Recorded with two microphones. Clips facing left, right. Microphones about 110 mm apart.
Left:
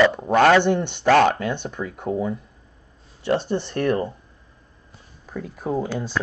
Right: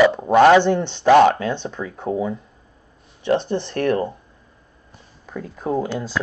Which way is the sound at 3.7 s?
55° right (ahead or behind).